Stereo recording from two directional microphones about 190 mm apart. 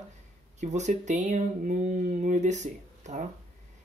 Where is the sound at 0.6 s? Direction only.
40° right (ahead or behind).